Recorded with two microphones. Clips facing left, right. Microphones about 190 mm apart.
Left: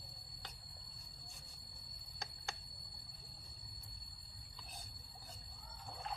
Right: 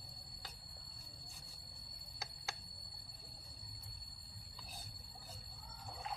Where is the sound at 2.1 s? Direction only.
5° right (ahead or behind).